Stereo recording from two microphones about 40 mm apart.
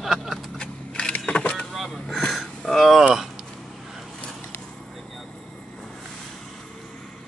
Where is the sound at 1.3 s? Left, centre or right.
Left.